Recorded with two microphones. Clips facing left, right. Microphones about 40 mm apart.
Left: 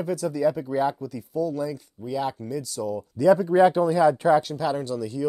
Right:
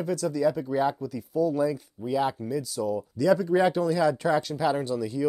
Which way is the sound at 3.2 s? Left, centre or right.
Centre.